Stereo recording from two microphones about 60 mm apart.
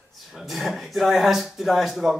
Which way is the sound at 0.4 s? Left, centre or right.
Centre.